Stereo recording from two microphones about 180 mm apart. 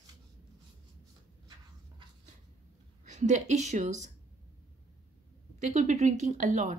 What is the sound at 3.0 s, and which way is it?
A woman's voice, 40° right (ahead or behind).